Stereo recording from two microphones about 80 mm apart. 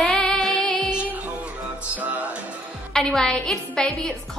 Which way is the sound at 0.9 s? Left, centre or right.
Centre.